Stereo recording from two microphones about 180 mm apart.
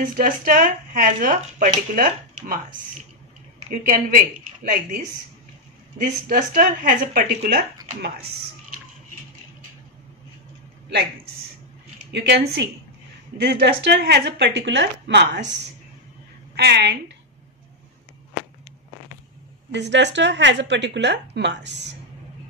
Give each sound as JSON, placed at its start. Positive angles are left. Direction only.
{"t": 0.0, "sound": "speech", "side_deg": -50}
{"t": 3.8, "sound": "speech", "side_deg": -55}
{"t": 5.9, "sound": "speech", "side_deg": -50}
{"t": 12.1, "sound": "speech", "side_deg": -70}
{"t": 16.5, "sound": "a woman's voice", "side_deg": -65}
{"t": 19.7, "sound": "speech", "side_deg": -80}